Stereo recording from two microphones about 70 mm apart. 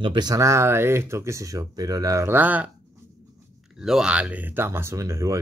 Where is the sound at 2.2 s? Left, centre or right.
Right.